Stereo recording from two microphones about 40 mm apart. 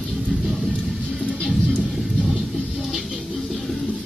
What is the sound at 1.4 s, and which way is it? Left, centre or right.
Music, centre.